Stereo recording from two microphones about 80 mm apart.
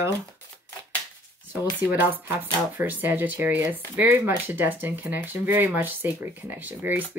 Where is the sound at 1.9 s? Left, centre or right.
Right.